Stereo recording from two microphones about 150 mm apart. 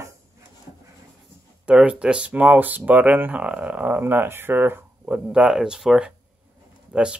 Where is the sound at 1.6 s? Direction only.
5° right (ahead or behind).